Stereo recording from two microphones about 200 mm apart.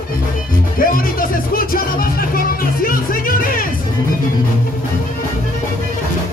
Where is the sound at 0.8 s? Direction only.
45° left (ahead or behind).